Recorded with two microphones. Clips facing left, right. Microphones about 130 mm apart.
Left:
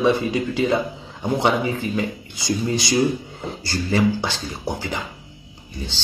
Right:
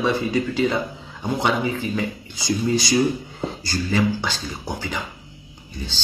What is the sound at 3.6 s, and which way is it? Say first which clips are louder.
Speech: left 2 dB; 25° left (ahead or behind).